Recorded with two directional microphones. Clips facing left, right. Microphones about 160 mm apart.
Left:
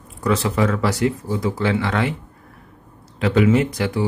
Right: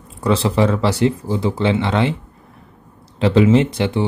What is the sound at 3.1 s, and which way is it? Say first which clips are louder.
Speech: right 3 dB; 30° right (ahead or behind).